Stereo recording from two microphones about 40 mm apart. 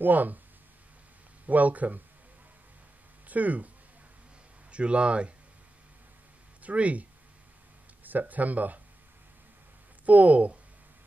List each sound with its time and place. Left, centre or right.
0.0 s speech: right
1.5 s speech: right
3.3 s speech: right
4.6 s speech: right
6.6 s speech: right
8.0 s speech: right
10.0 s speech: right